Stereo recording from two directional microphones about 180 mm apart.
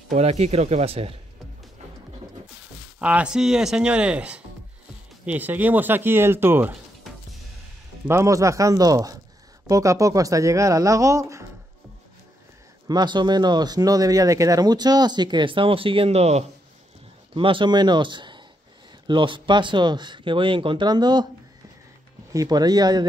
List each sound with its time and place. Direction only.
0.1 s speech: 35° right (ahead or behind)
3.0 s speech: 5° right (ahead or behind)
8.1 s speech: 15° right (ahead or behind)
12.8 s speech: 25° right (ahead or behind)
22.3 s speech: 20° right (ahead or behind)